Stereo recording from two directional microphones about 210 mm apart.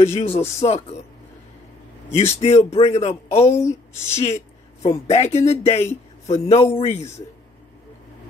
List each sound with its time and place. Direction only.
0.0 s speech: 30° left (ahead or behind)
2.1 s speech: 30° left (ahead or behind)
3.6 s speech: 10° left (ahead or behind)
5.1 s speech: 30° left (ahead or behind)